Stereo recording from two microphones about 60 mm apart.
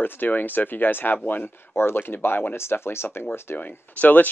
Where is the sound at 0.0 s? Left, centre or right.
Left.